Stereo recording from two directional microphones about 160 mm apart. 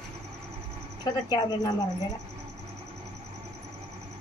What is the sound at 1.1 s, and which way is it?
Speech, 30° left (ahead or behind).